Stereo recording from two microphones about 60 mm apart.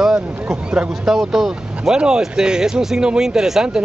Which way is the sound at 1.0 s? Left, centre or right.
Centre.